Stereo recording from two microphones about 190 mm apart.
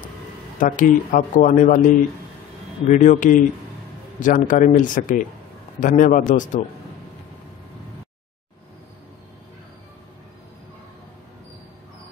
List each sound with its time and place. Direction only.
0.6 s speech: 45° left (ahead or behind)
2.9 s speech: 40° left (ahead or behind)